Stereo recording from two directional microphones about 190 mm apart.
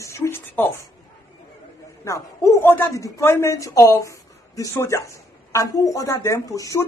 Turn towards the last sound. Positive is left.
turn(degrees=15)  # may be behind; listen again after turning